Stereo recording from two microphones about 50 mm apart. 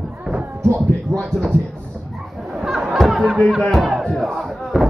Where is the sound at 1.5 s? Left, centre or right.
Right.